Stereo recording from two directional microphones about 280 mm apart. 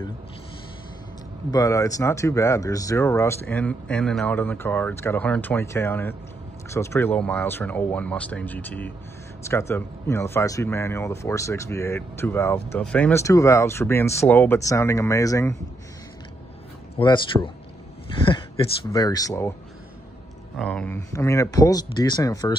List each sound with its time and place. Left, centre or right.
1.5 s speech: centre
16.9 s speech: centre
20.5 s speech: centre